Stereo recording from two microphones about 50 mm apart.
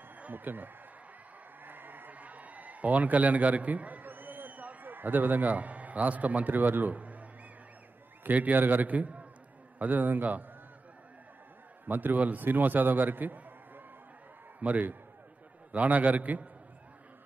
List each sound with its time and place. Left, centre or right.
0.3 s a man's voice: right
1.6 s a sound: right
8.2 s a man's voice: right
11.8 s a man's voice: right